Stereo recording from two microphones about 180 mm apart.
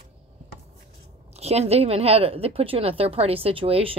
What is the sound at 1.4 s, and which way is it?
Speech, 35° right (ahead or behind).